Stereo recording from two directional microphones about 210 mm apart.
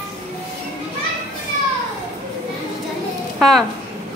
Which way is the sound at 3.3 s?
Centre (ahead or behind).